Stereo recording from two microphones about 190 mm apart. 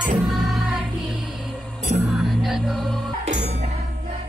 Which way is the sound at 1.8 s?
40° right (ahead or behind).